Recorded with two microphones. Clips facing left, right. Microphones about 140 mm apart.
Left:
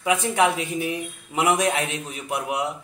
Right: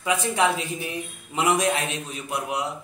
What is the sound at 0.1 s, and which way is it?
Speech, 10° left (ahead or behind).